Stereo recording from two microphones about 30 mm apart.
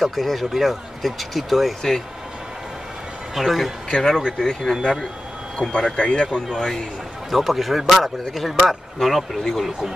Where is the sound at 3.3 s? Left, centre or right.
Centre.